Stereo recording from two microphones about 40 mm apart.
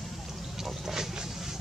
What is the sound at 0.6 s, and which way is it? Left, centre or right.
Boat, centre.